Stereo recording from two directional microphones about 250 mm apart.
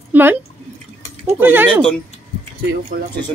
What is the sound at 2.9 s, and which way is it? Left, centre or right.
Speech, right.